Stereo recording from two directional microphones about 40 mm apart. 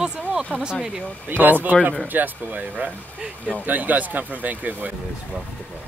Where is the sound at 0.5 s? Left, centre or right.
Right.